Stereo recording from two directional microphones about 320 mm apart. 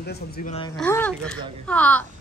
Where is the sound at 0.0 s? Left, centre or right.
Left.